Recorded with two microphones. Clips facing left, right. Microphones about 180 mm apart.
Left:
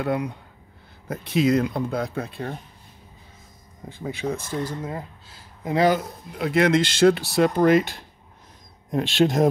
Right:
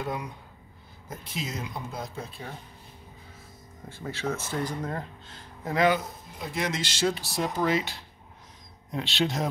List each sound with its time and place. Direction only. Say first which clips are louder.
0.0 s speech: left 8 dB; 65° left (ahead or behind)
3.9 s speech: left 4 dB; 15° left (ahead or behind)
6.3 s speech: left 12 dB; 65° left (ahead or behind); by 9.5 s 50° left (ahead or behind)